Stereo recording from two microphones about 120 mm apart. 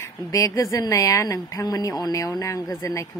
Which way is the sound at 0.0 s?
25° left (ahead or behind).